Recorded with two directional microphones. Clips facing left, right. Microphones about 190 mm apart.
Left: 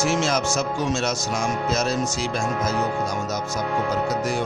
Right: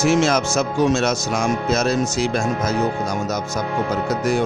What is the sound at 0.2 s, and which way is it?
Mantra, 60° right (ahead or behind).